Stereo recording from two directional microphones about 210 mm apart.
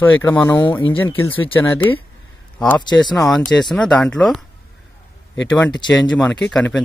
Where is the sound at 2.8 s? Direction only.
20° left (ahead or behind).